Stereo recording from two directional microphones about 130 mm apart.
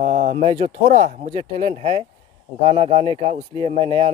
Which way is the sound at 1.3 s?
50° right (ahead or behind).